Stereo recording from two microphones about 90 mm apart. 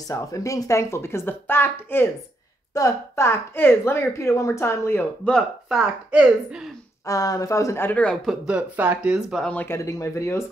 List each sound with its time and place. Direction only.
0.1 s speech: 40° left (ahead or behind)
2.7 s speech: 35° left (ahead or behind)
5.2 s speech: 15° left (ahead or behind)
5.7 s speech: 10° right (ahead or behind)
7.1 s speech: 40° left (ahead or behind)
8.3 s speech: 10° right (ahead or behind)
9.4 s speech: 15° left (ahead or behind)
9.7 s speech: 30° left (ahead or behind)